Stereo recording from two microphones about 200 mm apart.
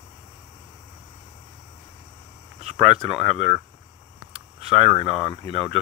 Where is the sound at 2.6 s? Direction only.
30° right (ahead or behind).